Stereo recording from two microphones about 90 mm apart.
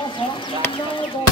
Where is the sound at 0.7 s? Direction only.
70° left (ahead or behind).